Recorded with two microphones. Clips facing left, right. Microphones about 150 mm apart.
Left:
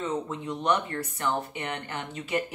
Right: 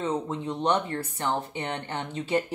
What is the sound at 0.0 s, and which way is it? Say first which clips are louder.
Speech: right 2 dB; 30° right (ahead or behind).